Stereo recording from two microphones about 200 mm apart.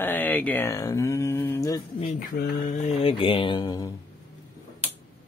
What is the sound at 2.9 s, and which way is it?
Speech, 25° left (ahead or behind).